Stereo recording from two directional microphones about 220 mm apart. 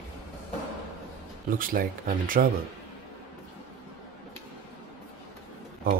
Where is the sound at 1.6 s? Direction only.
40° right (ahead or behind).